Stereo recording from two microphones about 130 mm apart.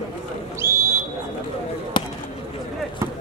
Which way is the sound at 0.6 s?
20° right (ahead or behind).